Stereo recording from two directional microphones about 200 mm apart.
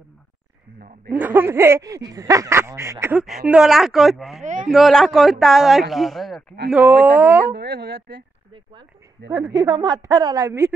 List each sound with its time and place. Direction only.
0.7 s speech: 45° right (ahead or behind)
1.1 s speech: 10° right (ahead or behind)
4.4 s speech: 40° right (ahead or behind)
4.6 s speech: centre (ahead or behind)
7.5 s speech: 60° right (ahead or behind)
9.3 s speech: 15° right (ahead or behind)